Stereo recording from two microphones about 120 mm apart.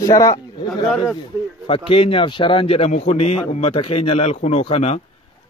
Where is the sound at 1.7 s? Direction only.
50° left (ahead or behind).